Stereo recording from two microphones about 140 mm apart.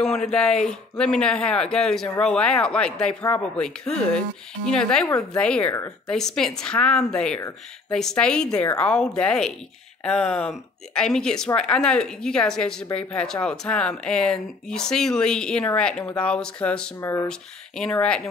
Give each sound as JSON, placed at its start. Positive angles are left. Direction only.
{"t": 0.0, "sound": "speech", "side_deg": 5}
{"t": 17.0, "sound": "speech", "side_deg": 20}
{"t": 17.3, "sound": "speech", "side_deg": 5}